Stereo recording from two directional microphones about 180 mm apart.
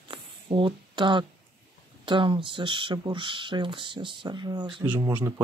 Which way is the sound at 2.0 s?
25° right (ahead or behind).